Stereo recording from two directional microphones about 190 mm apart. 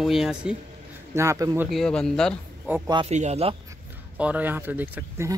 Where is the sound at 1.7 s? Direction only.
5° left (ahead or behind).